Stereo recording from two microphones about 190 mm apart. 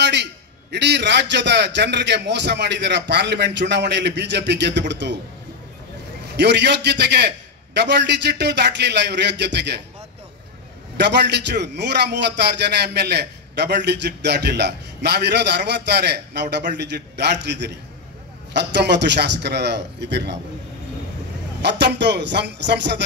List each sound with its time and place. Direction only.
0.0 s a man's voice: 65° right (ahead or behind)
6.3 s a man's voice: 65° right (ahead or behind)
11.0 s a man's voice: 65° right (ahead or behind)
21.5 s a man's voice: 65° right (ahead or behind)